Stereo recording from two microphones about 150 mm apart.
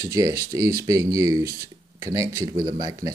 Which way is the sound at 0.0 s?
20° right (ahead or behind).